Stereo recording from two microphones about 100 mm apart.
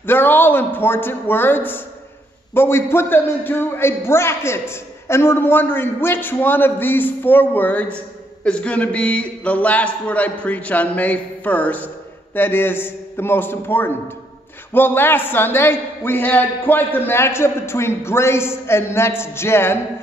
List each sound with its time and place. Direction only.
0.0 s a man's voice: 20° left (ahead or behind)